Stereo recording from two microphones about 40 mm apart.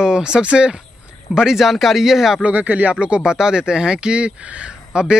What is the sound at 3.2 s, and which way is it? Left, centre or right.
Speech, centre.